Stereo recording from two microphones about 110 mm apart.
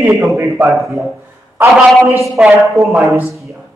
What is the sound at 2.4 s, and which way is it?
Speech, 10° right (ahead or behind).